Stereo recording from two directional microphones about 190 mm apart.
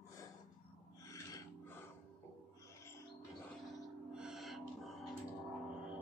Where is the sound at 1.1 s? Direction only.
15° left (ahead or behind).